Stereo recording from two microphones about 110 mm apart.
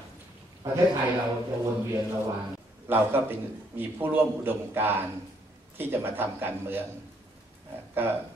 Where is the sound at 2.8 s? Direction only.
20° right (ahead or behind).